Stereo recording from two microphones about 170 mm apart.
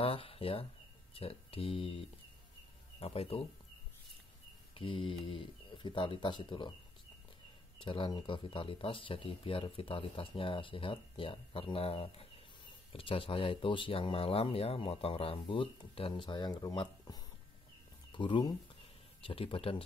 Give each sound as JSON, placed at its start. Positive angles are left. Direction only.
{"t": 0.0, "sound": "speech", "side_deg": 35}
{"t": 4.7, "sound": "speech", "side_deg": 30}
{"t": 7.8, "sound": "speech", "side_deg": 30}